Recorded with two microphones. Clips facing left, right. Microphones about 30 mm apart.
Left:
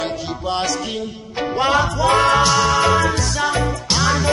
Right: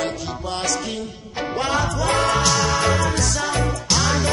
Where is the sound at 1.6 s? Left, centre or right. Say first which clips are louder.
Left 5 dB; centre.